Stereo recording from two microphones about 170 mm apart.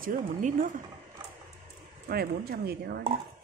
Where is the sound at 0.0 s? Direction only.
50° right (ahead or behind).